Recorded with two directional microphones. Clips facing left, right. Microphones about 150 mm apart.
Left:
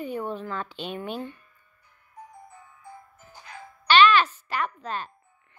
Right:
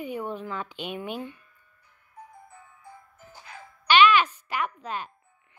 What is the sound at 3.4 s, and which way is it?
Music, 15° right (ahead or behind).